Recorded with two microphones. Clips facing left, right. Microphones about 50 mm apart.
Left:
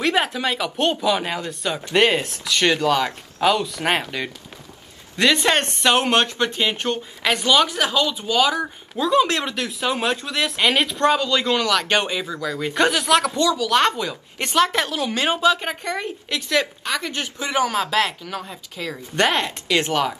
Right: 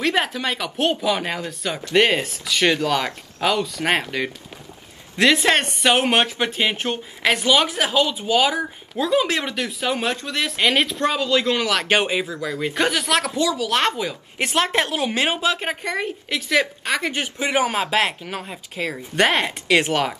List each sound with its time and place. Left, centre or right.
0.0 s speech: centre
16.8 s speech: right
19.1 s speech: centre